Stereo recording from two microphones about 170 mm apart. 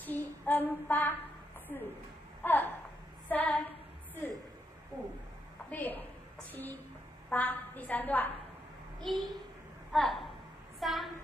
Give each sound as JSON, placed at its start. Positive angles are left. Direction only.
{"t": 0.0, "sound": "child singing", "side_deg": 10}
{"t": 1.7, "sound": "a woman's voice", "side_deg": 10}
{"t": 2.4, "sound": "a sound", "side_deg": 10}
{"t": 3.3, "sound": "female singing", "side_deg": 10}
{"t": 4.9, "sound": "speech", "side_deg": -20}
{"t": 5.7, "sound": "a woman's voice", "side_deg": 10}